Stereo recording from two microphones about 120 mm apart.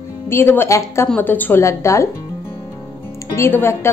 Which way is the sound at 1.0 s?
15° left (ahead or behind).